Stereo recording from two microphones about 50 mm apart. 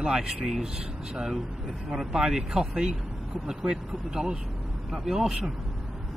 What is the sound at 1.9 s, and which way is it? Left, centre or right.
Speech, centre.